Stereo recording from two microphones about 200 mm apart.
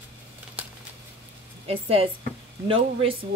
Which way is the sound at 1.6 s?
30° right (ahead or behind).